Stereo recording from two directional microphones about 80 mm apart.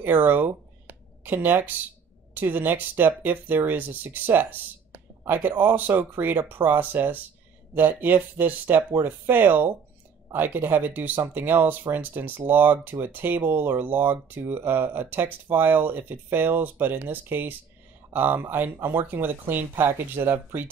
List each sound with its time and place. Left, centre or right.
0.0 s speech: right